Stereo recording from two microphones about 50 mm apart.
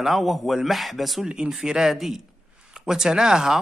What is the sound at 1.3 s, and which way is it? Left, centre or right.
Speech, centre.